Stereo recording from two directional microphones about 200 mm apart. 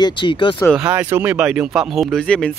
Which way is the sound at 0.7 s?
5° right (ahead or behind).